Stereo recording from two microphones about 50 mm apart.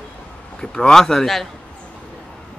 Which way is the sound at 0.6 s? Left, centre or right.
Centre.